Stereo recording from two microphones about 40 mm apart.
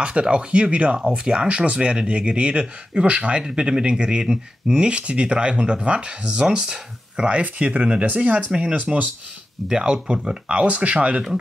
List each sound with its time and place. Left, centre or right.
0.0 s speech: right
3.4 s speech: centre
7.3 s speech: right
8.5 s speech: right
8.7 s speech: right
9.7 s speech: centre